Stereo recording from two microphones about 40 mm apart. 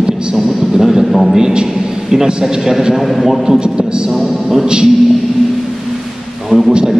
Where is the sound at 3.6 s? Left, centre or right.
Right.